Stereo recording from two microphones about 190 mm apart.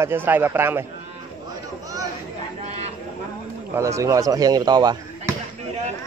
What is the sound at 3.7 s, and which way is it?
Speech, 15° right (ahead or behind).